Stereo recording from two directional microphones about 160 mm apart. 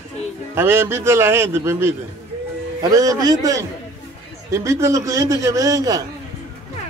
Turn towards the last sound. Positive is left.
turn(degrees=-20)  # may be behind; listen again after turning